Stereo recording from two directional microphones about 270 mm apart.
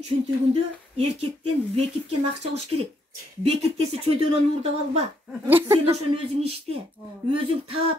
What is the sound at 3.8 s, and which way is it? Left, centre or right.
Speech, right.